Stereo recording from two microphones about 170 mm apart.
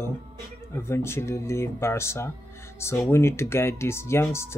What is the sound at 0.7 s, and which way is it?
Speech, 15° left (ahead or behind).